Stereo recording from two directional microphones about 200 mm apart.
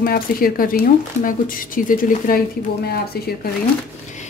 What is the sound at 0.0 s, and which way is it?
Speech, 45° left (ahead or behind).